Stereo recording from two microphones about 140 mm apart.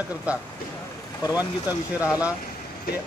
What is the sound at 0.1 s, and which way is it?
Speech, 10° right (ahead or behind).